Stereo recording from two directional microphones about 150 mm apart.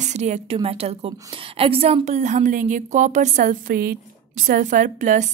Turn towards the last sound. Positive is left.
turn(degrees=-55)  # may be behind; listen again after turning